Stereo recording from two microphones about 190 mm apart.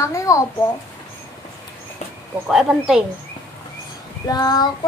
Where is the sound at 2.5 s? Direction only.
Centre (ahead or behind).